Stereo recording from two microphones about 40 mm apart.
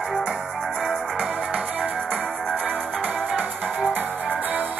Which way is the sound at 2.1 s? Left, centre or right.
Centre.